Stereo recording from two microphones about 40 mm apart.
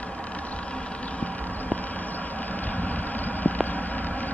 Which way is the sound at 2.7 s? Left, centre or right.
Left.